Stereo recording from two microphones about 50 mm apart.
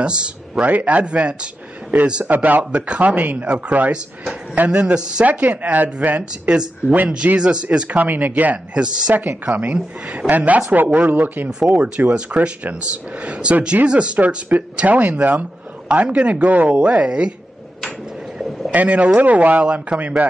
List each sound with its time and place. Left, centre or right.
0.0 s a man's voice: centre
0.7 s a man's voice: right; by 4.4 s centre
4.6 s a man's voice: right
5.2 s a man's voice: right
8.0 s speech: right
8.7 s speech: centre
9.1 s speech: right
9.5 s a man's voice: right
18.7 s a man's voice: right